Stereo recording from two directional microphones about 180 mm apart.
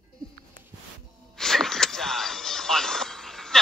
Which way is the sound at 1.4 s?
Centre (ahead or behind).